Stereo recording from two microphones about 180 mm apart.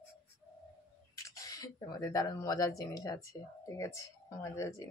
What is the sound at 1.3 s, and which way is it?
Speech, 20° left (ahead or behind).